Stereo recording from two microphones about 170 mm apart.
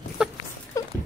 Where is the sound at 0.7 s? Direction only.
20° left (ahead or behind).